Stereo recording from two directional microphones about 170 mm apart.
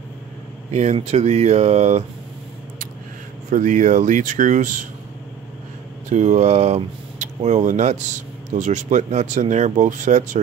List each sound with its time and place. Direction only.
0.7 s speech: 40° right (ahead or behind)
3.4 s speech: 45° right (ahead or behind)
6.0 s speech: 45° right (ahead or behind)